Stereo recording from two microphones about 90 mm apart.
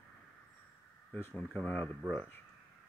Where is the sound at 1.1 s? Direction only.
20° left (ahead or behind).